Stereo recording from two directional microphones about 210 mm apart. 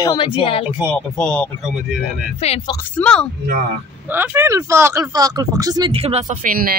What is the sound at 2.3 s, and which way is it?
Speech, 30° left (ahead or behind).